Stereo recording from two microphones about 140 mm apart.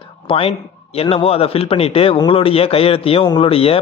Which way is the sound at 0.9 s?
45° left (ahead or behind).